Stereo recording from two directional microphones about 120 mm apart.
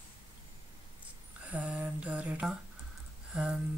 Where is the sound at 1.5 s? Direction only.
10° right (ahead or behind).